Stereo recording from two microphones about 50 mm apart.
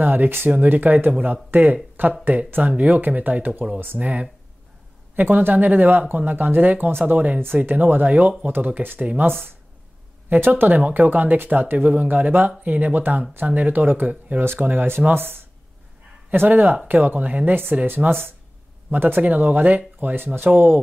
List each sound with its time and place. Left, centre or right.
0.0 s speech: right
2.7 s speech: right
3.8 s speech: right
5.1 s speech: right
10.3 s speech: right
14.4 s speech: right